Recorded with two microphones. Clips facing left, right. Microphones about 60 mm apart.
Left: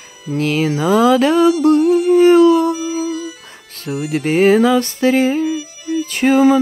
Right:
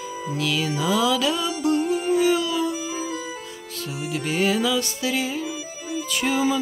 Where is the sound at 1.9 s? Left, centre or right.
Left.